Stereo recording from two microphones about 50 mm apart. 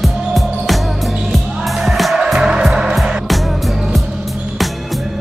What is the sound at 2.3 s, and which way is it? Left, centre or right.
Music, centre.